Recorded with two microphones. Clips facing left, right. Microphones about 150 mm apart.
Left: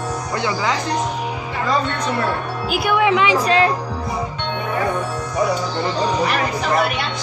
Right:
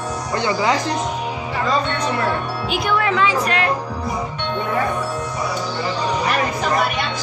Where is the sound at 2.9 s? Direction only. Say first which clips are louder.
Left 3 dB; 15° left (ahead or behind).